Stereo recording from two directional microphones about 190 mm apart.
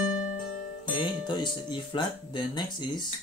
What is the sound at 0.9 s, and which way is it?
Music, 25° left (ahead or behind).